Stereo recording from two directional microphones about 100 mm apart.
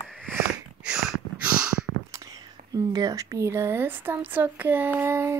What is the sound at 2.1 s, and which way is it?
Speech, 40° right (ahead or behind).